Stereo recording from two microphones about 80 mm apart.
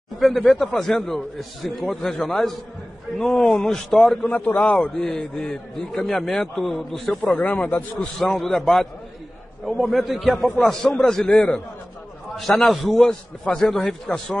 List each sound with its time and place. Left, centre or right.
0.2 s a man's voice: centre
4.5 s a man's voice: centre
7.3 s a man's voice: centre
8.2 s a man's voice: centre